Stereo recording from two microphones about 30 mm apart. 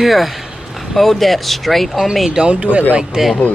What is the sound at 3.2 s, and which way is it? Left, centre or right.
Speech, centre.